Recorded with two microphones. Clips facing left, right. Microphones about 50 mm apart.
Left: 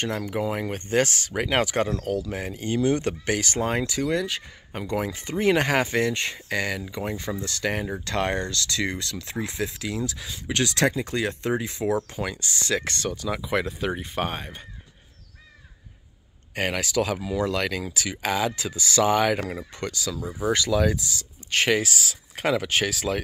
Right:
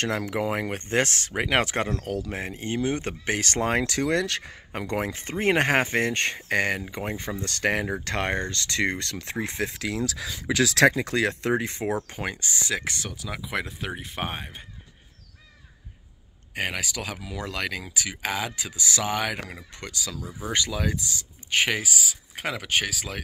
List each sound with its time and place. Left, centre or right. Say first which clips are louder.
0.0 s speech: even; right
0.5 s speech: even; right
3.3 s speech: right 1 dB; right
4.9 s speech: left 2 dB; right
9.8 s speech: right 1 dB; right
12.1 s speech: left 1 dB; right
12.6 s speech: left 5 dB; centre
16.5 s speech: left 5 dB; centre